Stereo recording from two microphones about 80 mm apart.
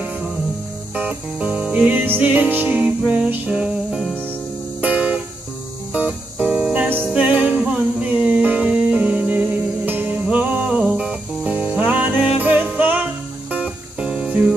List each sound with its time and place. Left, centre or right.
0.9 s music: centre